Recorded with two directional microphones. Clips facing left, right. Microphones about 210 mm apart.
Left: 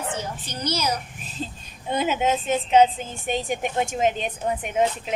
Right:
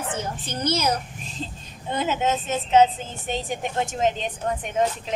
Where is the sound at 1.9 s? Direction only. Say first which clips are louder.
Left 1 dB; 10° left (ahead or behind).